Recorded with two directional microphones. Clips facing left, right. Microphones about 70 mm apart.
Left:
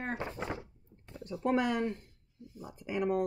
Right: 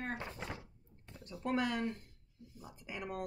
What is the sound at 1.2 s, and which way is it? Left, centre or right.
Speech, centre.